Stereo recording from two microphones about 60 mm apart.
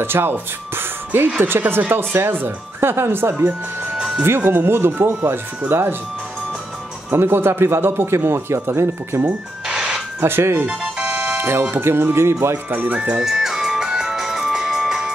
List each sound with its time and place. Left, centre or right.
0.0 s speech: right
7.1 s speech: right
9.7 s music: centre
10.2 s speech: right
10.7 s music: centre
11.3 s music: right
11.7 s speech: right
12.6 s speech: right
13.1 s music: centre